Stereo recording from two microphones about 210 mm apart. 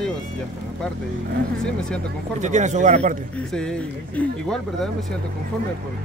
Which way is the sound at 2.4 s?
35° right (ahead or behind).